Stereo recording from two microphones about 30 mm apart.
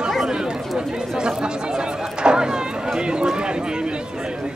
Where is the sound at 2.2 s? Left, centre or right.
Right.